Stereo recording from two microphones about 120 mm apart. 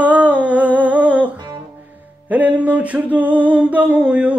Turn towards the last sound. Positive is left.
turn(degrees=-10)  # may be behind; listen again after turning